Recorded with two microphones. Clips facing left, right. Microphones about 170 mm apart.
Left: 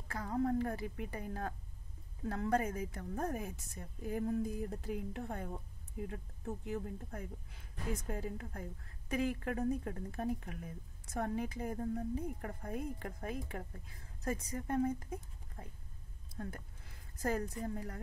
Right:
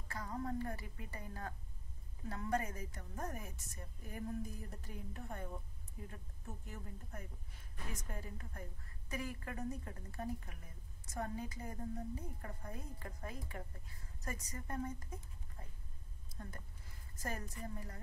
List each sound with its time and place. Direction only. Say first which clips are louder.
0.1 s a woman's voice: left 7 dB; 60° left (ahead or behind)
16.3 s a woman's voice: left 7 dB; 65° left (ahead or behind)